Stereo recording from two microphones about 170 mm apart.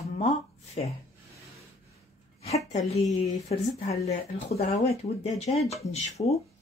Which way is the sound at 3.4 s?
40° left (ahead or behind).